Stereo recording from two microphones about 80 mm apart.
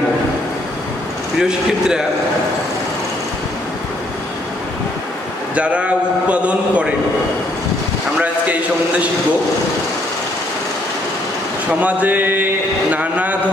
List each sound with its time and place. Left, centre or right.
1.4 s a man's voice: centre
5.5 s a man's voice: centre
11.8 s a sound: right
12.9 s a man's voice: centre